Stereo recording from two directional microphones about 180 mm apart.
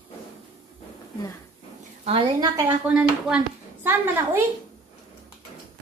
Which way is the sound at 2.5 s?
10° right (ahead or behind).